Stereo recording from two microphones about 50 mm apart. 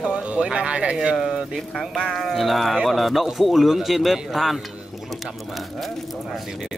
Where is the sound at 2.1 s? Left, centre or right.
Centre.